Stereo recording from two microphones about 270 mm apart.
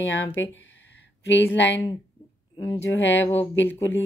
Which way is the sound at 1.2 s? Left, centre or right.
Left.